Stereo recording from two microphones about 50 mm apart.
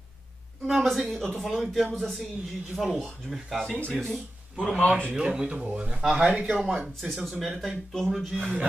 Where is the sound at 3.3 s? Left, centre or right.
Centre.